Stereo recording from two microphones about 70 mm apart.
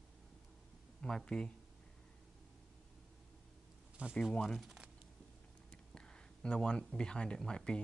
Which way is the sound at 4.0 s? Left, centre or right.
Centre.